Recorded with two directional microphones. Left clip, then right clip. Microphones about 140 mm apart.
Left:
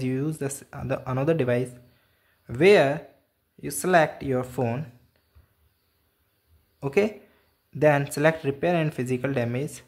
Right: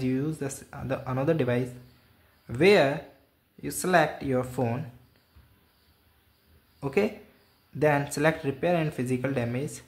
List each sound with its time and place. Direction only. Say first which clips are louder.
0.0 s speech: left 1 dB; 20° left (ahead or behind)
6.8 s speech: left 3 dB; 20° left (ahead or behind)